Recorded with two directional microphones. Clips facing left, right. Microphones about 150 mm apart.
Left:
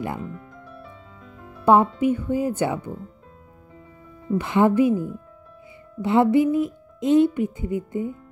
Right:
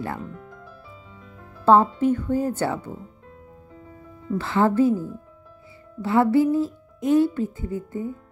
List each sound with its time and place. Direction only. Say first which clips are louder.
0.2 s music: left 2 dB; centre (ahead or behind)
1.6 s speech: even; 15° left (ahead or behind)
4.3 s speech: left 2 dB; 15° left (ahead or behind)